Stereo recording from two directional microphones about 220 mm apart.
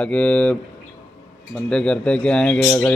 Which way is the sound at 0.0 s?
5° left (ahead or behind).